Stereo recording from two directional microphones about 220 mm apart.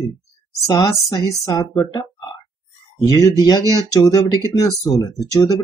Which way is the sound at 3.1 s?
15° left (ahead or behind).